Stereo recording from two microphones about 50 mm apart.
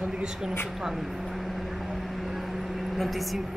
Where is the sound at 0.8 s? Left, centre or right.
Centre.